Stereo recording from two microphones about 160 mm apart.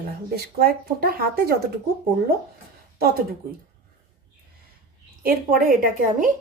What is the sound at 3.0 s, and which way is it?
Speech, 70° right (ahead or behind).